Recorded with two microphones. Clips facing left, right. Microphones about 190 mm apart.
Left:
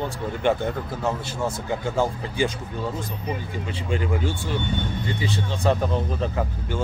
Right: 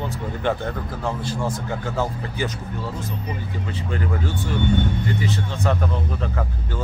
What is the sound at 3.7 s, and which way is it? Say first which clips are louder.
Speech: left 1 dB; 25° left (ahead or behind).